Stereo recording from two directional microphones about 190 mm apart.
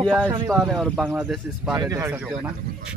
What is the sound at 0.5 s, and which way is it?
Speech, centre (ahead or behind).